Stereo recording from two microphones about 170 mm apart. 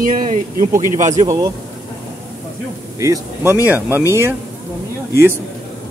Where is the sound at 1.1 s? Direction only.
20° right (ahead or behind).